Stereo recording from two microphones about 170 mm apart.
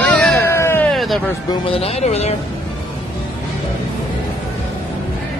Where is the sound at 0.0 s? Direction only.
5° left (ahead or behind).